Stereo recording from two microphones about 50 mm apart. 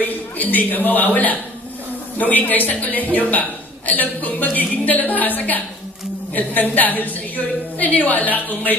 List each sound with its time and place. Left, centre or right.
0.0 s a man's voice: left